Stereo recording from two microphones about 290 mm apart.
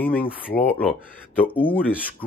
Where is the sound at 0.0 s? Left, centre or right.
Centre.